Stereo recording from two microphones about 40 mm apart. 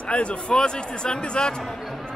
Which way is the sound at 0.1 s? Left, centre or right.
Left.